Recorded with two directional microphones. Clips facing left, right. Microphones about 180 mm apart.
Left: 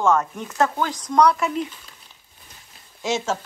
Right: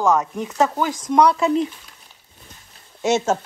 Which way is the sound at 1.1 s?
25° right (ahead or behind).